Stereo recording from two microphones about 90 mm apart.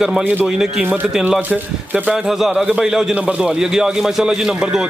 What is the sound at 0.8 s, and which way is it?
A man's voice, 20° right (ahead or behind).